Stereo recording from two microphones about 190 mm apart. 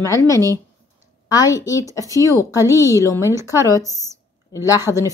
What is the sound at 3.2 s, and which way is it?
Speech, 15° right (ahead or behind).